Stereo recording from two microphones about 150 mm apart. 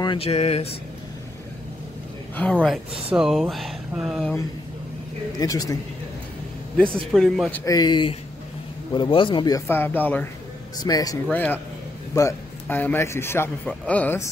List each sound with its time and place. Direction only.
0.0 s a man's voice: 35° left (ahead or behind)
2.5 s speech: 5° right (ahead or behind)
5.4 s speech: 25° left (ahead or behind)
7.1 s speech: centre (ahead or behind)
7.5 s a man's voice: 25° left (ahead or behind)
9.7 s a man's voice: 15° left (ahead or behind)
10.8 s speech: 25° left (ahead or behind)
11.2 s a man's voice: 10° left (ahead or behind)